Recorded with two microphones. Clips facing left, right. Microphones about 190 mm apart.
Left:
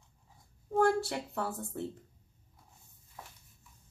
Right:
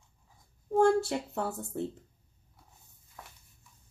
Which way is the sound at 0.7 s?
25° right (ahead or behind).